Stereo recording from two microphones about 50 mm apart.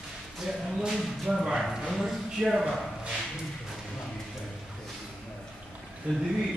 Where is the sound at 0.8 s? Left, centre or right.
Centre.